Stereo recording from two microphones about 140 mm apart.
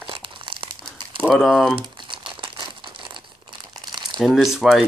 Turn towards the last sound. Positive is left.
turn(degrees=-5)  # may be behind; listen again after turning